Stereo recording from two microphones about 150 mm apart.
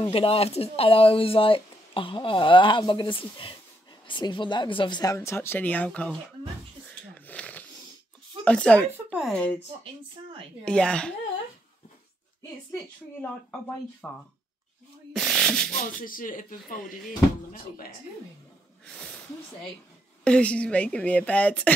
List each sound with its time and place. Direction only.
0.1 s speech: 40° left (ahead or behind); by 6.1 s 5° left (ahead or behind)
7.2 s wheeze: 10° left (ahead or behind)
8.5 s a woman's voice: 10° left (ahead or behind)
8.9 s speech: 10° right (ahead or behind)
9.3 s a woman's voice: 10° left (ahead or behind)
10.6 s a woman's voice: 5° left (ahead or behind)
14.0 s a woman's voice: 10° left (ahead or behind)
15.1 s a sound: centre (ahead or behind)
16.0 s speech: 65° left (ahead or behind)
20.2 s a woman's voice: 10° left (ahead or behind)